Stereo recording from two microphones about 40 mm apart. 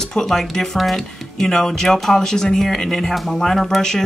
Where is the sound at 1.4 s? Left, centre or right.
Centre.